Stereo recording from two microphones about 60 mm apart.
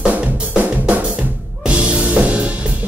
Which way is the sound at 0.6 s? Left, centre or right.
Right.